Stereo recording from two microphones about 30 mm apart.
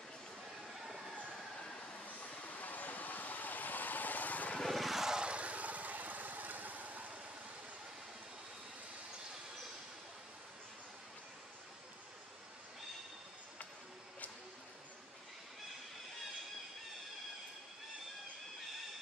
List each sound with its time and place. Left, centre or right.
1.8 s vehicle: left
4.6 s vehicle: centre
5.2 s vehicle: right